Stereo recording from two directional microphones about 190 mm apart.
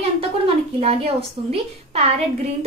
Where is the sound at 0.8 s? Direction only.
30° right (ahead or behind).